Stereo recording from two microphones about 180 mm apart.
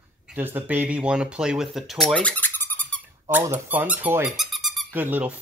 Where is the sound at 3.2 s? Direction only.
15° right (ahead or behind).